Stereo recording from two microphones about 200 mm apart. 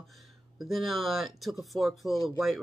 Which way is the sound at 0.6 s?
Centre (ahead or behind).